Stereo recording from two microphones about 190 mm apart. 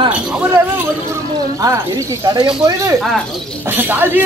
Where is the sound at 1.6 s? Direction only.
15° right (ahead or behind).